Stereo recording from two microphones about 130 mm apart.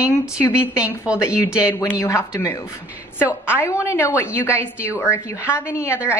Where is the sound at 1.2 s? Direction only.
25° left (ahead or behind).